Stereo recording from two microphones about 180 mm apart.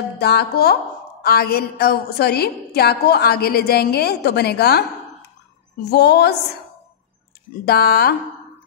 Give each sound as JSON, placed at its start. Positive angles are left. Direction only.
{"t": 0.2, "sound": "a woman's voice", "side_deg": 65}
{"t": 5.9, "sound": "a woman's voice", "side_deg": 65}
{"t": 7.6, "sound": "a woman's voice", "side_deg": 60}